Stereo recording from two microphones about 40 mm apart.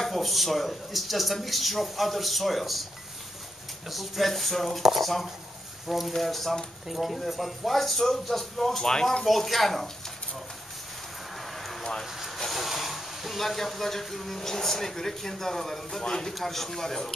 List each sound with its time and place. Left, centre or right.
0.1 s speech: centre
3.9 s speech: centre
8.8 s speech: centre
9.2 s speech: centre
11.3 s a sound: centre
12.1 s vehicle: centre
12.4 s speech: centre
16.3 s speech: centre